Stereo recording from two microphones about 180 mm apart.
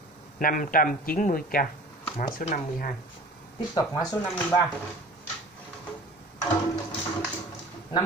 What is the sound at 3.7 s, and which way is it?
Speech, 20° left (ahead or behind).